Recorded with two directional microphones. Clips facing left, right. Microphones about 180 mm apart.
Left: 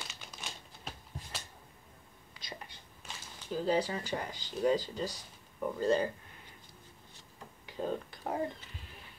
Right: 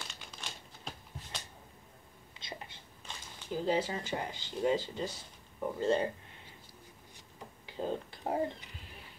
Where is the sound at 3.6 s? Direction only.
25° right (ahead or behind).